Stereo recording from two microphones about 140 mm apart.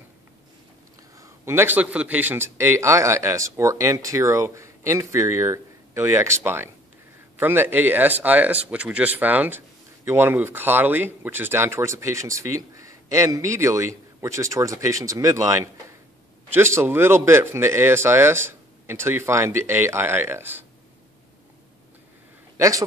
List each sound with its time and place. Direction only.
1.1 s speech: 20° right (ahead or behind)
22.6 s speech: 25° right (ahead or behind)